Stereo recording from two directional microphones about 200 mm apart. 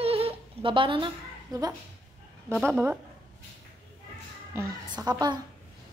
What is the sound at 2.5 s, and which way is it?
Speech, centre (ahead or behind).